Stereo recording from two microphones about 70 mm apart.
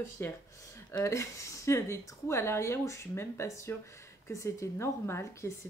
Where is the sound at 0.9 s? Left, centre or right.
Left.